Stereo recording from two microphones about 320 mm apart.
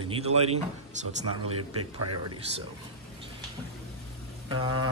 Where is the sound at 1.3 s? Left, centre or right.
Right.